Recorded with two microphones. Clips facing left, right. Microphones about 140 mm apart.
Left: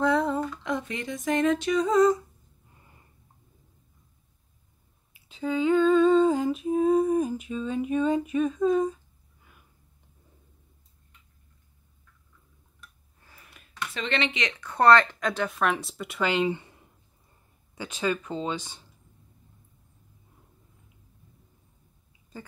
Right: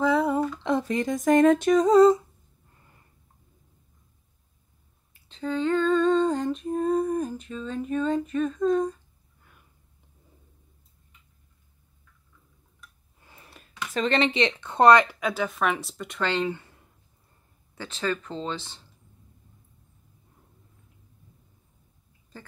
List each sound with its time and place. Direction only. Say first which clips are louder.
0.0 s a sound: right 2 dB; 5° right (ahead or behind)
0.7 s speech: right 6 dB; 35° right (ahead or behind)
5.1 s humming: left 1 dB; 5° left (ahead or behind)
13.2 s a sound: right 4 dB; 25° right (ahead or behind)
13.9 s speech: right 6 dB; 40° right (ahead or behind); by 16.6 s 15° left (ahead or behind)
17.7 s speech: left 1 dB; 10° left (ahead or behind)